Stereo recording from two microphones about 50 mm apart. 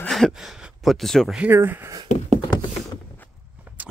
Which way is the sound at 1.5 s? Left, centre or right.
Right.